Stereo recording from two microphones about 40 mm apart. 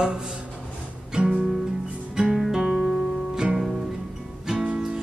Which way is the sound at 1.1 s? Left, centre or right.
Centre.